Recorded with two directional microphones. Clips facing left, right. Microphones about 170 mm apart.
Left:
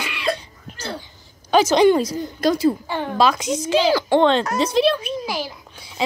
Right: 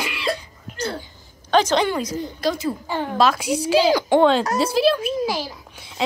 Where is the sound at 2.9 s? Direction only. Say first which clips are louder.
Even; 5° right (ahead or behind).